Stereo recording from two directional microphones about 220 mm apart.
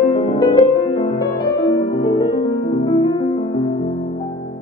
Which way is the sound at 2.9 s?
20° left (ahead or behind).